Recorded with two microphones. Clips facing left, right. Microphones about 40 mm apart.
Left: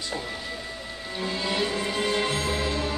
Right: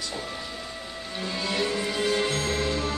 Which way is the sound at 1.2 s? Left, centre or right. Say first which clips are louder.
Left 1 dB; centre.